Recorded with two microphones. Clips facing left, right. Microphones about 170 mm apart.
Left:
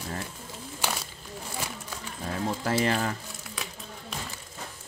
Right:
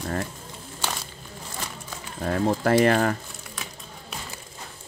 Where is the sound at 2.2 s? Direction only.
60° right (ahead or behind).